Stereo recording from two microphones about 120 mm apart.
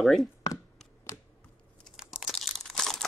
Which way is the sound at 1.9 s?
5° right (ahead or behind).